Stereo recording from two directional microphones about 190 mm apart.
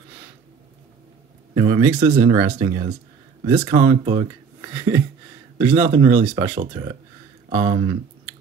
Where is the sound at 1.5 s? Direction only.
20° right (ahead or behind).